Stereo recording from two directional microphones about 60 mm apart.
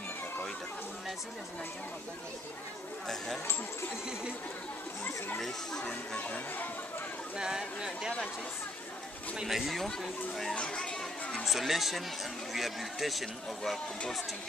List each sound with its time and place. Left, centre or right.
5.4 s speech: centre
6.1 s speech: left
7.3 s speech: centre
9.4 s a man's voice: centre
10.5 s a sound: centre
11.4 s a man's voice: centre